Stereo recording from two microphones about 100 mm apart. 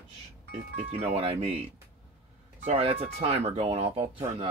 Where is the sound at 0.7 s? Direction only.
90° right.